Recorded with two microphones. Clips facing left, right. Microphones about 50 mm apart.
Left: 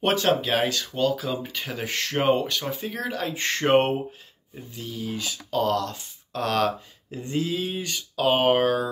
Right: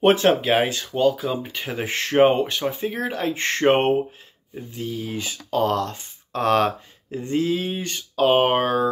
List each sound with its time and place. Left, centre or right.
0.0 s speech: right
1.0 s speech: centre